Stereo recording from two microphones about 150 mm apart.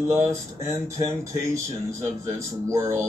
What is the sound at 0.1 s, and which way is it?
Speech, 20° right (ahead or behind).